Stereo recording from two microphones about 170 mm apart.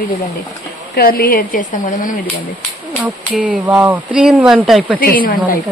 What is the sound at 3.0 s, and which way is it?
A man's voice, 10° right (ahead or behind).